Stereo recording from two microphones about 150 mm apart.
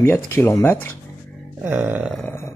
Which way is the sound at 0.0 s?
15° left (ahead or behind).